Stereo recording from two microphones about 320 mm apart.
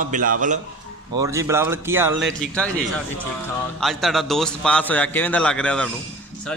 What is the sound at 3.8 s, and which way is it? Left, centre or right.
A man's voice, centre.